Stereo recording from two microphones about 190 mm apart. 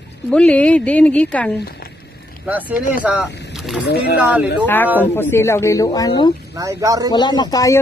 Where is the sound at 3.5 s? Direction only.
Centre (ahead or behind).